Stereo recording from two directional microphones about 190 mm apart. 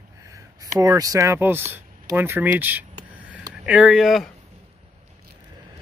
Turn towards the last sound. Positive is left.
turn(degrees=0)  # may be behind; listen again after turning